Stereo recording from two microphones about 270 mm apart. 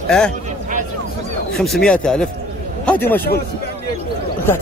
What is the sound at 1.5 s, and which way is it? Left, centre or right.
A man's voice, centre.